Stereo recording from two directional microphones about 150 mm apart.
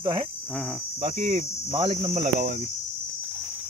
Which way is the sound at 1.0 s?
40° right (ahead or behind).